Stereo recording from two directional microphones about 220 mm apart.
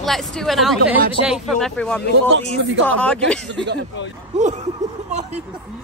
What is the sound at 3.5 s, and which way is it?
Speech, 50° right (ahead or behind).